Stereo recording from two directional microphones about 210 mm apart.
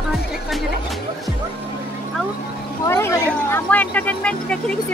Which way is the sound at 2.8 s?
15° left (ahead or behind).